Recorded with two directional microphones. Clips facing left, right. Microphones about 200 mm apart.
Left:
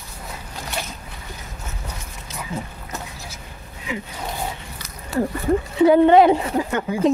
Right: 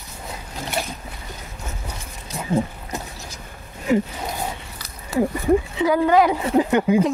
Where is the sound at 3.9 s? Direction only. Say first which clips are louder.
Right 11 dB; 40° right (ahead or behind).